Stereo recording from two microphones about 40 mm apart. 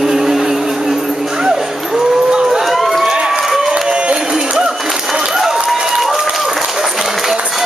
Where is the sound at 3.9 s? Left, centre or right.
Right.